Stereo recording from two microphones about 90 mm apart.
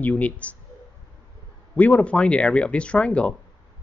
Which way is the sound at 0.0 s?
15° left (ahead or behind).